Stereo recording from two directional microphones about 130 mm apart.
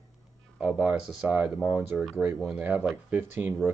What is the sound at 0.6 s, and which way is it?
Speech, 10° right (ahead or behind).